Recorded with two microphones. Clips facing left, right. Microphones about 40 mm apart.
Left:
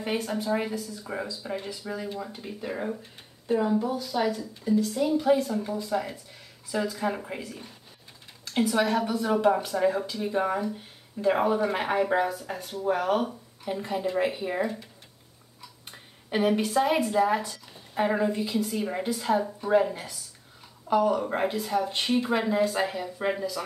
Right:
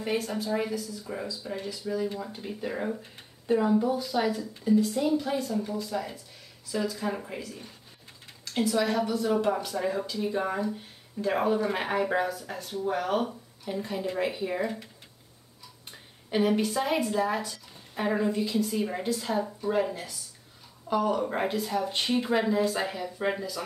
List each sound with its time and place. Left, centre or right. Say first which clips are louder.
0.0 s speech: left 1 dB; left
2.1 s speech: even; centre
5.0 s a woman's voice: left 4 dB; centre
5.4 s speech: left 1 dB; left
6.9 s speech: left 2 dB; centre
8.5 s speech: left 2 dB; left
9.5 s a woman's voice: left 4 dB; centre
12.5 s speech: left 3 dB; left
12.9 s a woman's voice: left 3 dB; centre
16.3 s a woman's voice: left 1 dB; centre
20.9 s a woman's voice: left 3 dB; centre